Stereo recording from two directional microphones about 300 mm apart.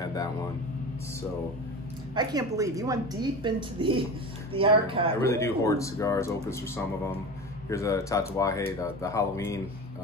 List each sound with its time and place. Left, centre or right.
0.1 s speech: centre
2.1 s a woman's voice: centre
5.2 s speech: centre